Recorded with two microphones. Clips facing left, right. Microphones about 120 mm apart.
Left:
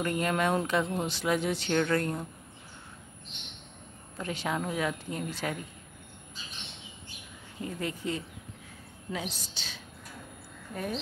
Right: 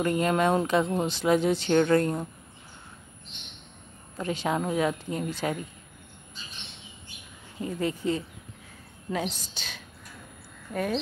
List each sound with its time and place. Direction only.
0.0 s speech: 25° right (ahead or behind)
4.2 s speech: 25° right (ahead or behind)
7.6 s speech: 30° right (ahead or behind)
9.1 s a woman's voice: 55° right (ahead or behind)
10.7 s speech: 90° right